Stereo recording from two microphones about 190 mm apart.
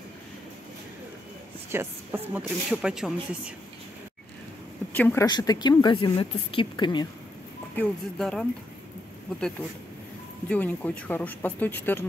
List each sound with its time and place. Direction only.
1.7 s speech: 10° right (ahead or behind)
4.9 s speech: 10° left (ahead or behind)
5.2 s speech: 20° left (ahead or behind)
7.7 s speech: 5° left (ahead or behind)
10.5 s speech: 5° left (ahead or behind)